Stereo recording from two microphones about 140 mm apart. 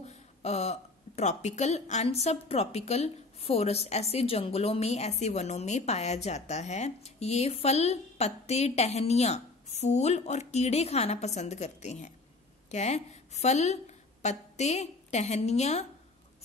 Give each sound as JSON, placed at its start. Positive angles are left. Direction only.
{"t": 0.0, "sound": "speech", "side_deg": 50}